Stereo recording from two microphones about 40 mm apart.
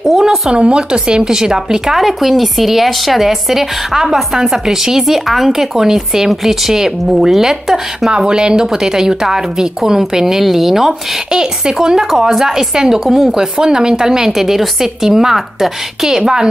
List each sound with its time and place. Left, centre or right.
0.2 s a woman's voice: centre
8.3 s a woman's voice: right
16.1 s a woman's voice: centre